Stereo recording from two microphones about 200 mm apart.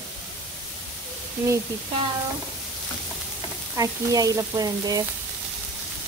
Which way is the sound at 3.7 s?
15° right (ahead or behind).